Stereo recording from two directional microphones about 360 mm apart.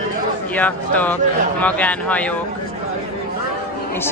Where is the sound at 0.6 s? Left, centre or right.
Centre.